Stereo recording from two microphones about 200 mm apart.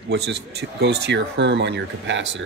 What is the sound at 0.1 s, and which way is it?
A man's voice, 55° right (ahead or behind).